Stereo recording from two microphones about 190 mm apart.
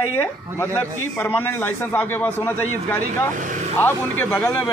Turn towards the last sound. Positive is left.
turn(degrees=10)  # may be behind; listen again after turning